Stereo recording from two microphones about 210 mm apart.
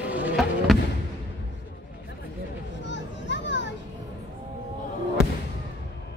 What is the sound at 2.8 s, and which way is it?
Children playing, 60° left (ahead or behind).